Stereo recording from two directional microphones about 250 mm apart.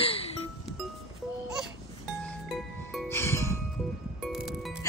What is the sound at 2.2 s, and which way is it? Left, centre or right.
Music, centre.